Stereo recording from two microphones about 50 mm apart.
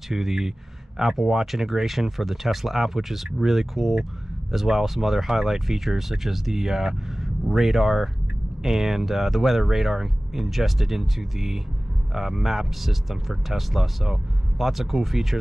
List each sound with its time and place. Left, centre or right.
0.1 s speech: centre